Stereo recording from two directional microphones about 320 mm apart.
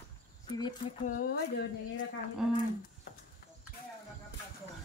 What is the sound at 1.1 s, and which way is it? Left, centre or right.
Speech, left.